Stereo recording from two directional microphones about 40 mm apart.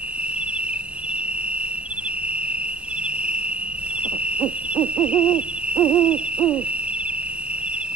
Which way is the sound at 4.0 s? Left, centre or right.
Right.